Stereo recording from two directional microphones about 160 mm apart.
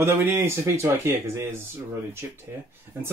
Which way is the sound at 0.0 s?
15° right (ahead or behind).